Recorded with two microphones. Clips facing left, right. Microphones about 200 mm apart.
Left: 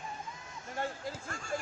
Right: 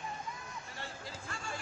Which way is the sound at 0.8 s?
45° left (ahead or behind).